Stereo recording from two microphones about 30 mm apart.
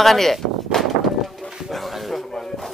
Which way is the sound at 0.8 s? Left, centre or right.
Centre.